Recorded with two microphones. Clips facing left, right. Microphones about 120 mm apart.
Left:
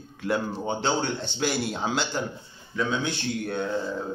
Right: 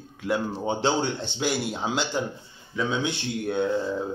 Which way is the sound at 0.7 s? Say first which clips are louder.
Right 2 dB; 25° right (ahead or behind).